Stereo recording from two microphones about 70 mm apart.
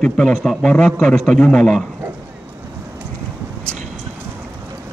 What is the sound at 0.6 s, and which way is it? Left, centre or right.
A man's voice, centre.